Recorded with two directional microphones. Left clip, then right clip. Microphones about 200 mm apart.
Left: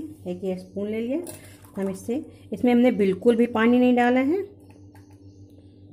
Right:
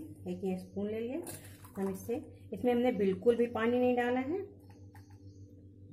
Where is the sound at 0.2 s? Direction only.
30° left (ahead or behind).